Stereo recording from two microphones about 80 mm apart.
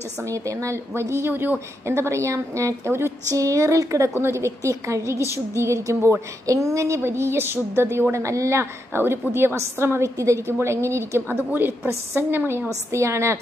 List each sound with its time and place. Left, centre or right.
0.2 s a woman's voice: right